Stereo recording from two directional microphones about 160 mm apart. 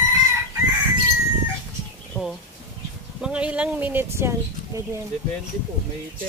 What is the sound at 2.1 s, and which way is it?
Speech, 10° left (ahead or behind).